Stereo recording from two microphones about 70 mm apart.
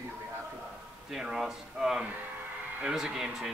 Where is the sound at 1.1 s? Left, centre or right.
Centre.